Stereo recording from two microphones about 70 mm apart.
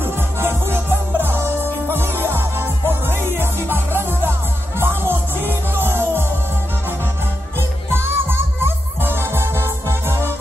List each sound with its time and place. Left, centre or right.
0.0 s music: right
7.9 s music: right